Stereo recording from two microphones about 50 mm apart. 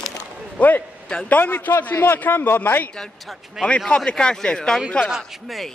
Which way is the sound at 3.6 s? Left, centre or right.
Left.